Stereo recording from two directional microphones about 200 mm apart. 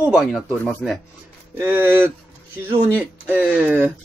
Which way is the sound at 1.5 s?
10° right (ahead or behind).